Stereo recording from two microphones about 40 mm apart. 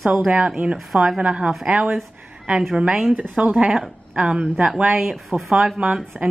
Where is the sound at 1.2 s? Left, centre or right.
Right.